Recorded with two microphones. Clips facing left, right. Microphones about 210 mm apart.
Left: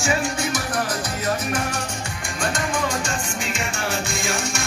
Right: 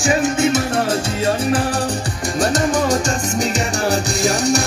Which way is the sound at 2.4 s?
35° right (ahead or behind).